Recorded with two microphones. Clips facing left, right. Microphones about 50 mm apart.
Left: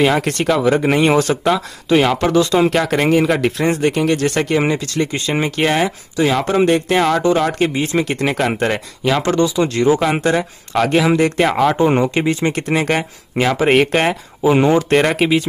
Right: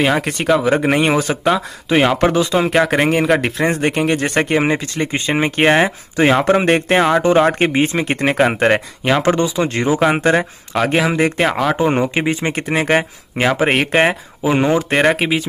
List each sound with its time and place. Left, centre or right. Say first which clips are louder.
0.0 s speech: left 1 dB; centre; by 7.0 s right
7.0 s speech: right 2 dB; right
11.4 s speech: left 2 dB; centre